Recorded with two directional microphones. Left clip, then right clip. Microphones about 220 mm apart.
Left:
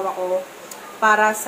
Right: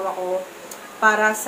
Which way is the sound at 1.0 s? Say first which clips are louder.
Left 1 dB; 15° left (ahead or behind).